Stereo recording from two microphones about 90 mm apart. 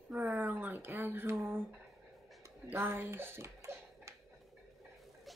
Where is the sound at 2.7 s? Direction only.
25° right (ahead or behind).